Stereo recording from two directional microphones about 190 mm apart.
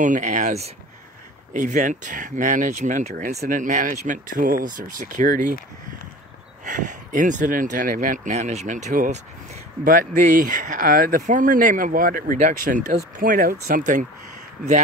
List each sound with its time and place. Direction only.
0.0 s speech: 40° right (ahead or behind)
6.6 s speech: 40° right (ahead or behind)